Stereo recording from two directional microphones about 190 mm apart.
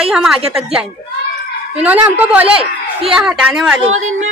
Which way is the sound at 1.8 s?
10° right (ahead or behind).